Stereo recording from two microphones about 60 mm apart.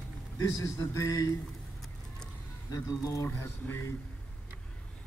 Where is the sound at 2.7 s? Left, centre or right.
Left.